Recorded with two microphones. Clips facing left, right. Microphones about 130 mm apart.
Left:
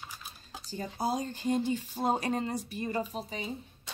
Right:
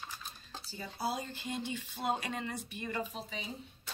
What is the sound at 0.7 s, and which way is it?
Speech, 45° left (ahead or behind).